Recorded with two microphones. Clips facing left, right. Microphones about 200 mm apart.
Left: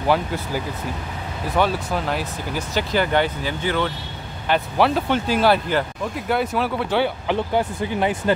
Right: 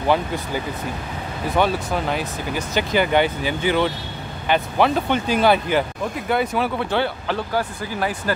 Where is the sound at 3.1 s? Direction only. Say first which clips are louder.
Right 2 dB; 10° right (ahead or behind).